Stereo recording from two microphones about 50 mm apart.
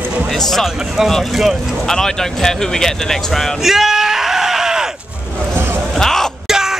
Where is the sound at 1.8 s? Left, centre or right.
Centre.